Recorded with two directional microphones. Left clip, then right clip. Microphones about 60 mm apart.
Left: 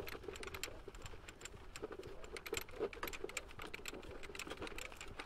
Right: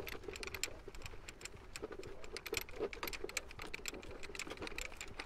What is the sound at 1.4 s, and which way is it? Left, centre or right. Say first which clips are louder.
Sewing machine: right 1 dB; centre.